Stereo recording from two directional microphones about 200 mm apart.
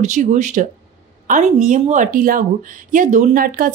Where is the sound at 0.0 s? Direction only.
35° right (ahead or behind).